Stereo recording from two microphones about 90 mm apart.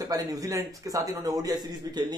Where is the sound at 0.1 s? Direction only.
40° right (ahead or behind).